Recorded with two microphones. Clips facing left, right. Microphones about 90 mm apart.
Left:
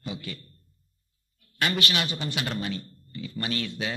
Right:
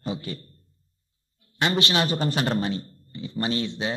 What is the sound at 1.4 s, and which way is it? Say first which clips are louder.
A woman's voice: right 3 dB; 25° right (ahead or behind).